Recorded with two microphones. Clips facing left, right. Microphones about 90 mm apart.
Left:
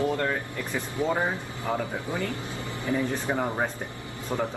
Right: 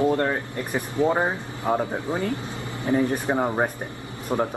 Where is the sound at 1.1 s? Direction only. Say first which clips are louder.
Right 3 dB; 30° right (ahead or behind).